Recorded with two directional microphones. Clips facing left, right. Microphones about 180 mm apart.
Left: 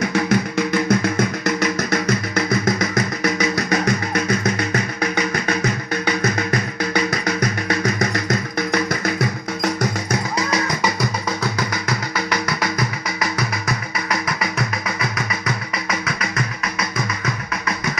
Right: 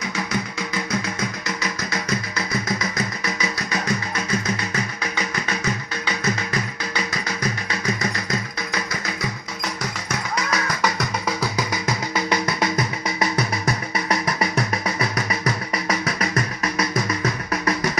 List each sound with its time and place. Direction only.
0.1 s music: 60° left (ahead or behind)
12.3 s music: 25° right (ahead or behind)
15.0 s music: 35° right (ahead or behind)